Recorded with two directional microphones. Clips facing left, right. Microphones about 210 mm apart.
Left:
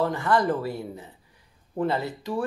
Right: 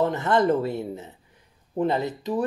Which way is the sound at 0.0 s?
20° right (ahead or behind).